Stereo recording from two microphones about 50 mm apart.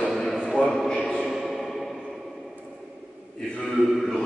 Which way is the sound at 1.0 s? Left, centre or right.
Centre.